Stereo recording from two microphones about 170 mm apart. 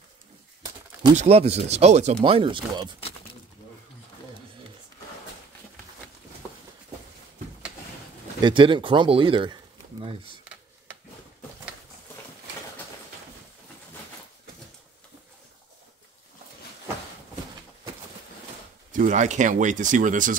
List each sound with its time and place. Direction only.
1.1 s speech: 40° right (ahead or behind)
2.2 s speech: 30° right (ahead or behind)
8.4 s speech: 30° right (ahead or behind)
18.9 s speech: 50° right (ahead or behind)